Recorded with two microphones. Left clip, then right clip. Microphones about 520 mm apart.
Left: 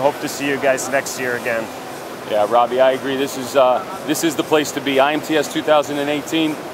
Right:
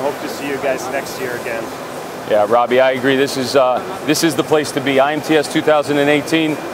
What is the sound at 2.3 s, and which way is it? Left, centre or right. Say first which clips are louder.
Speech: right 2 dB; right.